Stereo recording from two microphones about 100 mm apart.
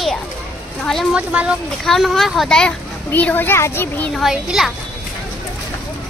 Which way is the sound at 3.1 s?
15° left (ahead or behind).